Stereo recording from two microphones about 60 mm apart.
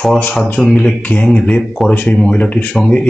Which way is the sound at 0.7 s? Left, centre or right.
Left.